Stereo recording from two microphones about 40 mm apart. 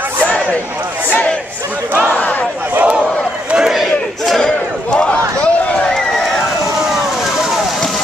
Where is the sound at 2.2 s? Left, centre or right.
Left.